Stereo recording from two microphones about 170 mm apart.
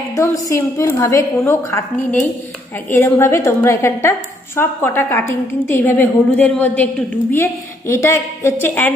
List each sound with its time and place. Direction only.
0.1 s a woman's voice: 20° left (ahead or behind)